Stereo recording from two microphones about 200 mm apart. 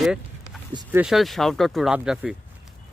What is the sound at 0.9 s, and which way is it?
Speech, 5° right (ahead or behind).